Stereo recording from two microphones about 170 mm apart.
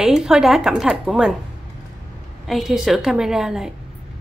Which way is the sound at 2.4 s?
Centre (ahead or behind).